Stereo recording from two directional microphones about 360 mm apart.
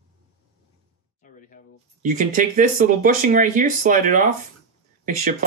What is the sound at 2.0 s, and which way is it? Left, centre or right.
Speech, right.